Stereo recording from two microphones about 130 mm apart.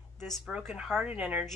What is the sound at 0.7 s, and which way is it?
Speech, 10° right (ahead or behind).